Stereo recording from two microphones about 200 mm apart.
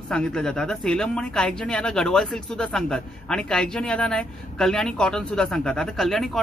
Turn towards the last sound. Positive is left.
turn(degrees=0)  # may be behind; listen again after turning